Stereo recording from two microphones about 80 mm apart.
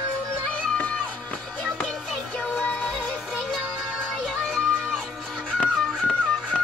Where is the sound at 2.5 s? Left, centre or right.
Centre.